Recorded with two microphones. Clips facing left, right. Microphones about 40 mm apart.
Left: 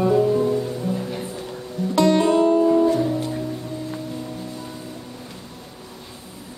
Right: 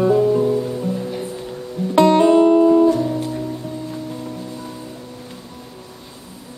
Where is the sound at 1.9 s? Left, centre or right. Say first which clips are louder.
Right 5 dB; right.